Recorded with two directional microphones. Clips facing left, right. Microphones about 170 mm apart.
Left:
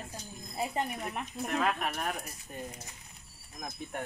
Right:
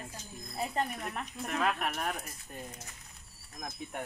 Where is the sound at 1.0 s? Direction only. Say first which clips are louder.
Left 1 dB; 10° left (ahead or behind).